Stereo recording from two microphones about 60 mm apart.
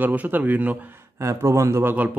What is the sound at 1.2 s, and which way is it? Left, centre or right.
Speech, right.